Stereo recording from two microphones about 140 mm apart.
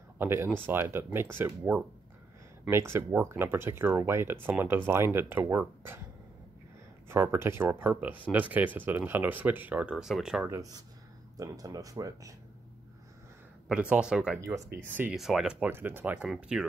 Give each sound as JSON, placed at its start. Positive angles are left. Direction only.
{"t": 0.2, "sound": "speech", "side_deg": -15}
{"t": 7.1, "sound": "speech", "side_deg": -15}
{"t": 10.4, "sound": "speech", "side_deg": -25}
{"t": 13.7, "sound": "speech", "side_deg": -10}